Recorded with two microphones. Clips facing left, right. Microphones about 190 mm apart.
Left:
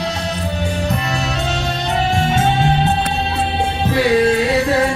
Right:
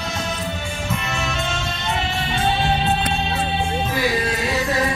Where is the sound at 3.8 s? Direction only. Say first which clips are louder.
Left 8 dB; 70° left (ahead or behind).